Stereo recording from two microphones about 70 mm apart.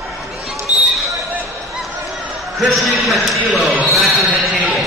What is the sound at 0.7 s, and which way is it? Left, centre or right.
Basketball bounce, centre.